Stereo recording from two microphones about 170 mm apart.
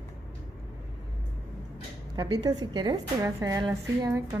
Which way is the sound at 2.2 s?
25° right (ahead or behind).